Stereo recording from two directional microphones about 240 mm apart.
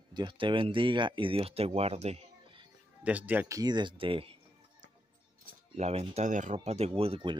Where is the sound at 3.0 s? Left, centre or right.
Centre; by 4.3 s right.